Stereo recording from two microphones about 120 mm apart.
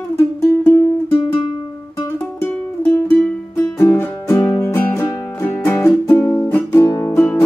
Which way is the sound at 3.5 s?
20° left (ahead or behind).